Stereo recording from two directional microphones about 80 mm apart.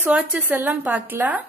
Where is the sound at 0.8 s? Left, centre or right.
Centre.